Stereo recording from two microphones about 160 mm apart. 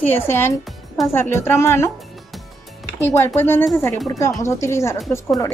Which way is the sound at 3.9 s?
Centre (ahead or behind).